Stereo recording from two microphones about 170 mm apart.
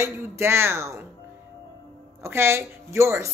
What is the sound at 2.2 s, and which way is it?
Speech, 15° right (ahead or behind).